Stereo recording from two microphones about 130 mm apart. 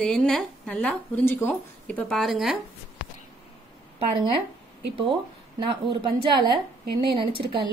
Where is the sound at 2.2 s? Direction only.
Centre (ahead or behind).